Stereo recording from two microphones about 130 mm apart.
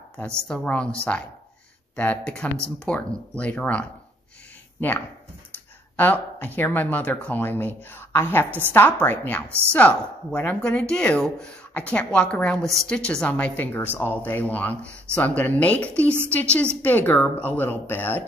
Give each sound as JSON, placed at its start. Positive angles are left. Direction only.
{"t": 0.2, "sound": "speech", "side_deg": 5}
{"t": 5.9, "sound": "speech", "side_deg": 15}